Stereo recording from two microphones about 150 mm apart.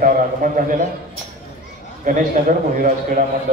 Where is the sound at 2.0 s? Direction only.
65° right (ahead or behind).